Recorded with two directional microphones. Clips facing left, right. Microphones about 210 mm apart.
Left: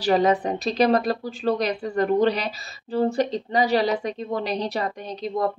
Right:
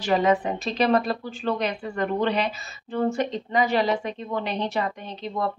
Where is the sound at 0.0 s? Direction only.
35° left (ahead or behind).